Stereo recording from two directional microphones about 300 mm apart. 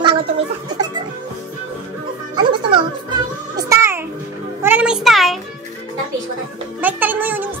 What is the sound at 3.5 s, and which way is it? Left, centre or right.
Music, centre.